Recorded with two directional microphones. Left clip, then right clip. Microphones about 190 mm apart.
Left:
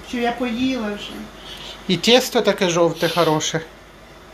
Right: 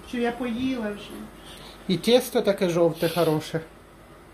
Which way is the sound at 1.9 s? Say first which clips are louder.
Left 5 dB; 5° right (ahead or behind).